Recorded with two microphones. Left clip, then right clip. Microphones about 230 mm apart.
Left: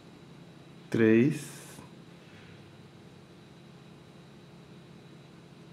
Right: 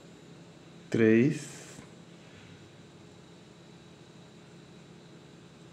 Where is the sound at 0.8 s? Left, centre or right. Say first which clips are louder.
Even; centre.